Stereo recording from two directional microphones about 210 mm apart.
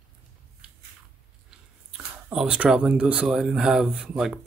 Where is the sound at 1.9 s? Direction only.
5° right (ahead or behind).